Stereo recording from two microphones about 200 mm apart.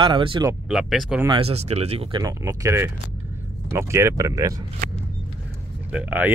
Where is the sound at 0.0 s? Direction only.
25° right (ahead or behind).